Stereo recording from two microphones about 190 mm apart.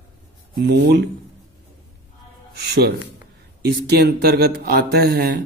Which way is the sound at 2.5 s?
60° right (ahead or behind).